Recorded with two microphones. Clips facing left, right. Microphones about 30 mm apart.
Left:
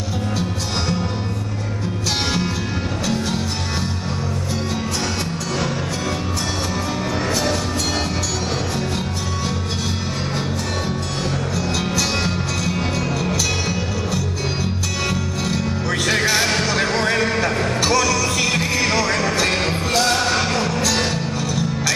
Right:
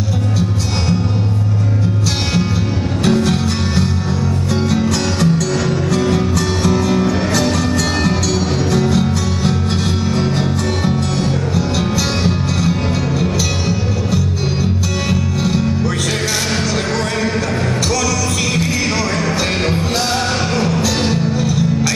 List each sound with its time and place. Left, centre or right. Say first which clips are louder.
3.1 s music: right 10 dB; right
8.7 s music: right 8 dB; right
15.0 s music: right 5 dB; centre
19.7 s music: right 1 dB; centre